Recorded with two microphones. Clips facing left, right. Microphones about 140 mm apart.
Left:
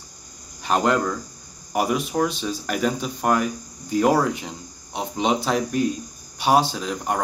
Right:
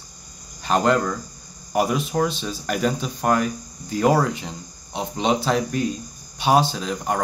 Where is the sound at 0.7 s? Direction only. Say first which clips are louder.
Right 1 dB; 5° left (ahead or behind).